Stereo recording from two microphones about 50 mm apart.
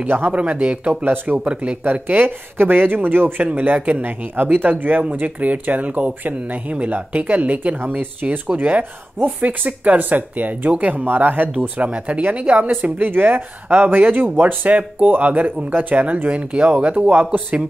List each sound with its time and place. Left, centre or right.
0.3 s speech: right
1.0 s speech: right
1.4 s speech: right
1.8 s speech: right
3.5 s speech: right
8.5 s speech: right
11.7 s speech: right
17.1 s speech: right